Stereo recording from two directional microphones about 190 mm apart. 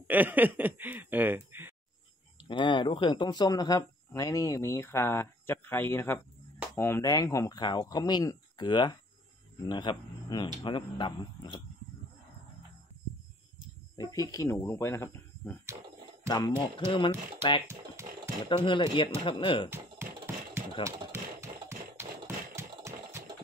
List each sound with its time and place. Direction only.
0.1 s speech: 10° right (ahead or behind)
2.4 s speech: 25° left (ahead or behind)
13.9 s speech: 20° left (ahead or behind)
16.3 s speech: 25° left (ahead or behind)
17.6 s typing: 15° right (ahead or behind)
18.4 s speech: 25° left (ahead or behind)
20.8 s a sound: 15° right (ahead or behind)